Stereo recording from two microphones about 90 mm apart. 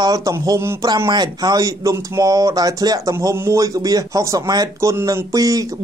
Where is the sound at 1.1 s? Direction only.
50° right (ahead or behind).